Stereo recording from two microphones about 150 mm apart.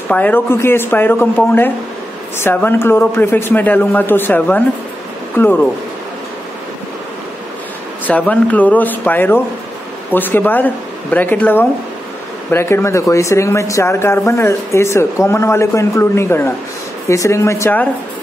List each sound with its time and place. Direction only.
0.1 s a man's voice: 10° left (ahead or behind)
8.1 s a man's voice: 10° left (ahead or behind)